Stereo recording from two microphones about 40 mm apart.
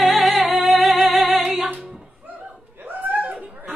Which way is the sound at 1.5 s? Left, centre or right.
Right.